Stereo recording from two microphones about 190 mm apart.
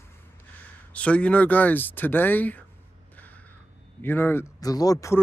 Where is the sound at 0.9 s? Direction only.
5° left (ahead or behind).